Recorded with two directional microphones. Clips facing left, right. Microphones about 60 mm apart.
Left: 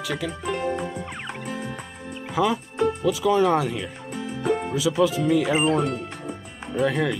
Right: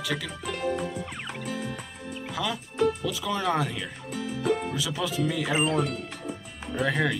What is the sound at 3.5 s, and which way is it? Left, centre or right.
Speech, centre.